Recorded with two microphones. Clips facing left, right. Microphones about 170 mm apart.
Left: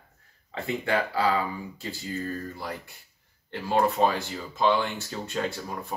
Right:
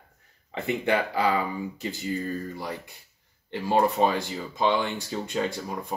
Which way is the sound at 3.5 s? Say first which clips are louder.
Right 1 dB; 15° right (ahead or behind).